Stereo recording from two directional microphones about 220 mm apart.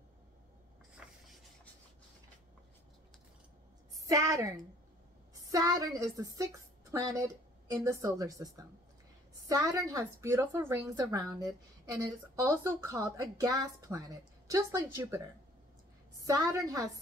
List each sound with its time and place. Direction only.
0.9 s writing: centre (ahead or behind)
4.0 s a woman's voice: 15° right (ahead or behind)